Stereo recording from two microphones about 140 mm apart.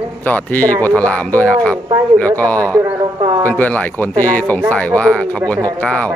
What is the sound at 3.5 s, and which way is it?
Speech, 10° left (ahead or behind).